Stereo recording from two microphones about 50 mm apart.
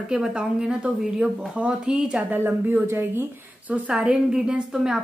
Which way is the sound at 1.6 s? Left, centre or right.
Right.